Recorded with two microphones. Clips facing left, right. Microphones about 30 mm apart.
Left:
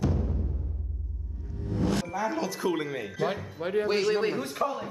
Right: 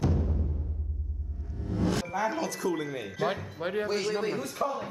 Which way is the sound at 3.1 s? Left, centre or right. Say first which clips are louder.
Even; centre.